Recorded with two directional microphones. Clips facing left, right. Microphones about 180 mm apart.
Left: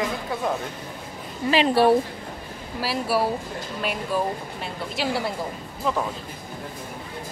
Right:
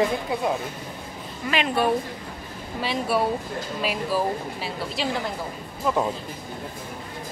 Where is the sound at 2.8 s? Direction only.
5° left (ahead or behind).